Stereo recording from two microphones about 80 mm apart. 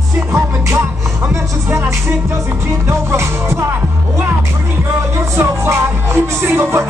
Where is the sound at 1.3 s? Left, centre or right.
Right.